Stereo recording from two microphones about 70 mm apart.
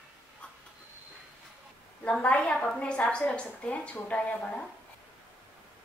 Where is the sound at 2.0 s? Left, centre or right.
Centre.